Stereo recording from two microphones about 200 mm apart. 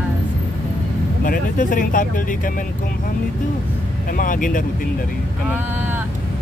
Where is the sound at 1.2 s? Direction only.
40° left (ahead or behind).